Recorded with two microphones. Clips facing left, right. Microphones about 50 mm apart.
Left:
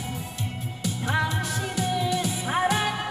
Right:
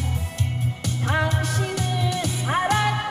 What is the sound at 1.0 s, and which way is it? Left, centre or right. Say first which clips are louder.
Music: right 2 dB; centre.